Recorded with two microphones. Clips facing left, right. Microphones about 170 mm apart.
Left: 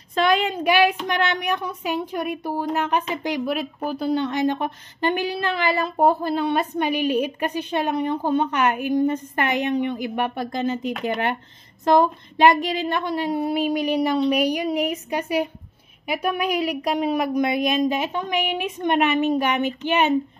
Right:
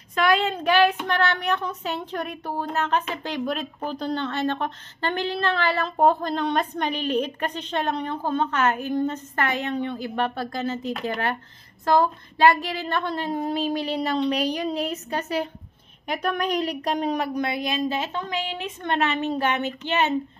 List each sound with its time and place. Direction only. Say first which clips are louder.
0.1 s speech: left 2 dB; 25° left (ahead or behind)
0.4 s speech: left 1 dB; 15° left (ahead or behind)